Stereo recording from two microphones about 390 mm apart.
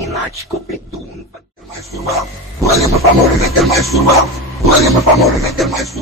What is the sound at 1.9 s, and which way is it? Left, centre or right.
Speech, centre.